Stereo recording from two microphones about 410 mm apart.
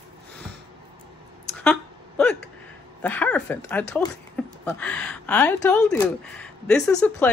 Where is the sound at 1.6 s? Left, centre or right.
Centre.